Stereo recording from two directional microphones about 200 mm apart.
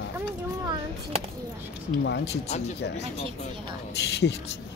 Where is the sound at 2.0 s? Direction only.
60° left (ahead or behind).